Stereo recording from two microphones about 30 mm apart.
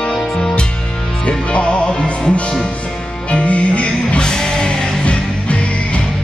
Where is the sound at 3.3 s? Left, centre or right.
Left.